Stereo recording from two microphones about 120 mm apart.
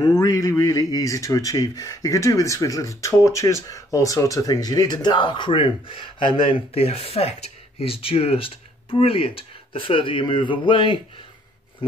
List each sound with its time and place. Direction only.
0.0 s speech: 30° left (ahead or behind)